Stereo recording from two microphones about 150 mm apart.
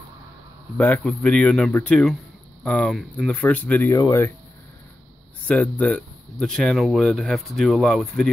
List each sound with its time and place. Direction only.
0.7 s speech: 10° left (ahead or behind)
5.5 s speech: 5° left (ahead or behind)